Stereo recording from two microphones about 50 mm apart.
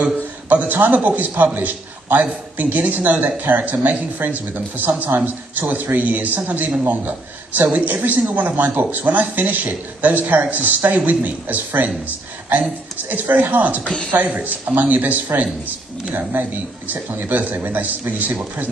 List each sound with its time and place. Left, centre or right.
0.0 s a man's voice: right
13.1 s a woman's voice: right